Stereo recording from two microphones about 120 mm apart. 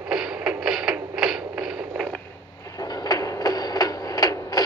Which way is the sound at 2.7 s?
30° left (ahead or behind).